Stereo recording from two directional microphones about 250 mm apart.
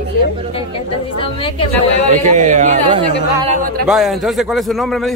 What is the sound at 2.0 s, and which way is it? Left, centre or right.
A man's voice, right.